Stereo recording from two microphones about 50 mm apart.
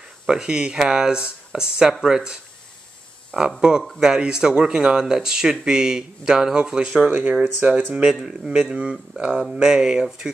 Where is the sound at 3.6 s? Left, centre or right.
Centre.